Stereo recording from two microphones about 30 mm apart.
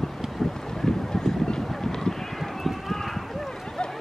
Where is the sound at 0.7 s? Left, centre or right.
Centre.